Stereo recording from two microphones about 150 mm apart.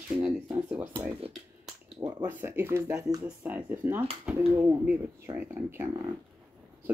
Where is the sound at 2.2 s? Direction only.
15° right (ahead or behind).